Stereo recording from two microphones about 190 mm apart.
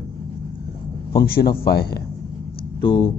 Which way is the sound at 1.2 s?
55° left (ahead or behind).